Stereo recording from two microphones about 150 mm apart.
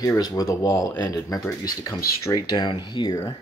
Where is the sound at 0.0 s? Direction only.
25° left (ahead or behind).